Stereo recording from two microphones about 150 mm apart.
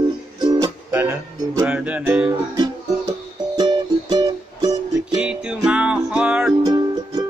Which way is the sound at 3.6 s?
25° right (ahead or behind).